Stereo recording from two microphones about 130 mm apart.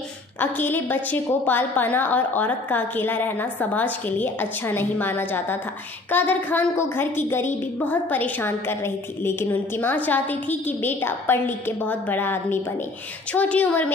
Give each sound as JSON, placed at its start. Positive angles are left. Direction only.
{"t": 0.4, "sound": "a woman's voice", "side_deg": 15}